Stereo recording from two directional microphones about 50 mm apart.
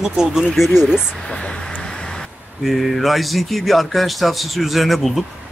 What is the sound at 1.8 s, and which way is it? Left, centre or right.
Vehicle, centre.